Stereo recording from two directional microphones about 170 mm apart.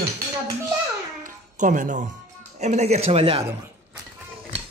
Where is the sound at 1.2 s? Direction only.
50° right (ahead or behind).